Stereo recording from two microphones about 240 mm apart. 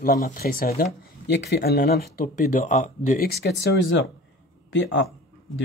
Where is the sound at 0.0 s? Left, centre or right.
Left.